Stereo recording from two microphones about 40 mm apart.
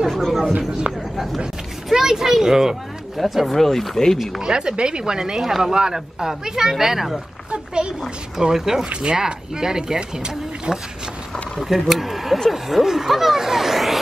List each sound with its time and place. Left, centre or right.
0.1 s speech: centre
0.6 s speech: right
1.1 s speech: centre
1.9 s speech: centre
3.2 s speech: centre
4.4 s speech: right
7.5 s speech: right
8.4 s speech: centre
8.8 s speech: right
9.2 s speech: centre
11.9 s speech: centre